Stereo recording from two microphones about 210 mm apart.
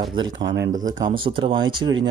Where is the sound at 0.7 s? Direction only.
35° right (ahead or behind).